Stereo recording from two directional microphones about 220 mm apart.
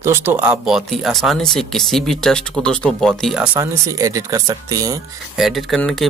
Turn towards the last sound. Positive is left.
turn(degrees=0)  # may be behind; listen again after turning